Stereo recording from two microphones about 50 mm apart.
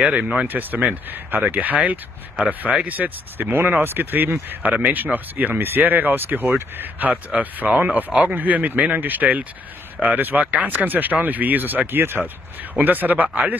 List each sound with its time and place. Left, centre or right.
0.0 s speech: right
0.5 s speech: right